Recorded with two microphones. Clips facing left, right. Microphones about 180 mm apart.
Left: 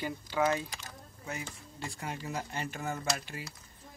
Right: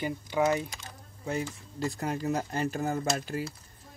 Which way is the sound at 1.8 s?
40° right (ahead or behind).